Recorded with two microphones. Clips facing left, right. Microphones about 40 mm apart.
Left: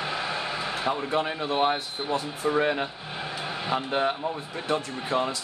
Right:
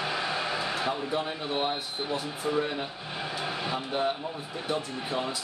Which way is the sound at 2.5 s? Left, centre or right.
Left.